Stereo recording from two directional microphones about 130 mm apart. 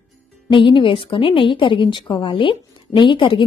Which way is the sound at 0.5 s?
40° left (ahead or behind).